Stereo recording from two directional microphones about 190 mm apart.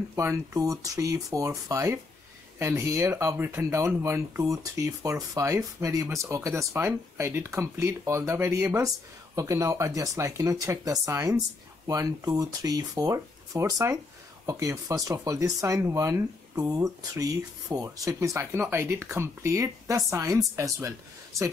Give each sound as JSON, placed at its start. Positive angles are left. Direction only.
{"t": 0.1, "sound": "speech", "side_deg": -15}